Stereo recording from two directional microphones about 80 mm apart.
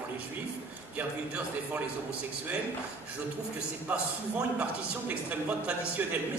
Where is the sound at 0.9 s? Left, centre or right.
Centre.